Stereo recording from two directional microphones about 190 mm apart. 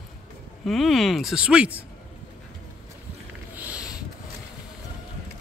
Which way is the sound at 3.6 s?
5° right (ahead or behind).